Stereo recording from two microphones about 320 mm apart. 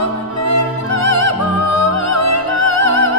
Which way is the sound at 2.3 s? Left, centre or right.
Left.